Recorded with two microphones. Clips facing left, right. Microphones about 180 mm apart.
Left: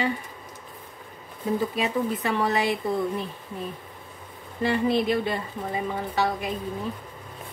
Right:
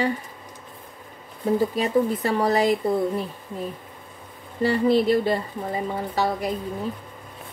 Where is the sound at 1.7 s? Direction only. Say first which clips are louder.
Right 4 dB; 40° right (ahead or behind).